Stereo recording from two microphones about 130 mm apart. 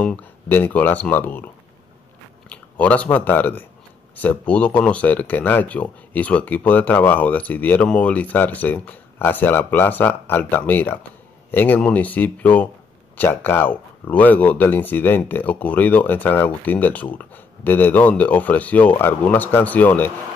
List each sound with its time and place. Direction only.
0.0 s speech: 15° left (ahead or behind)
2.5 s speech: 10° left (ahead or behind)